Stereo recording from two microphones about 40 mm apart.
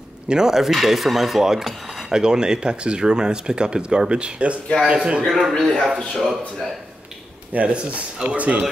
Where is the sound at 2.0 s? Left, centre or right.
Centre.